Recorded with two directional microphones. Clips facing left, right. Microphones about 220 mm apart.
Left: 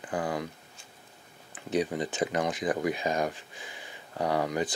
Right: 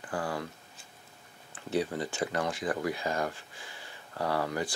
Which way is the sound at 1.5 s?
15° left (ahead or behind).